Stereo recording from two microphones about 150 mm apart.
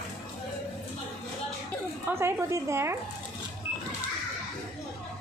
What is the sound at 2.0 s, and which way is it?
Speech, 15° right (ahead or behind).